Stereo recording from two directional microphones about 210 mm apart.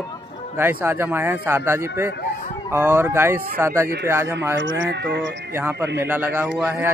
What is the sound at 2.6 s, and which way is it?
Speech, 10° right (ahead or behind).